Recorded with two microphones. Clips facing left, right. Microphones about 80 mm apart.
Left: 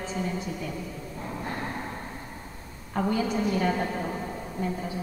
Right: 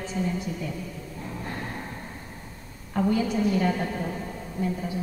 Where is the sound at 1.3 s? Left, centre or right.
Centre.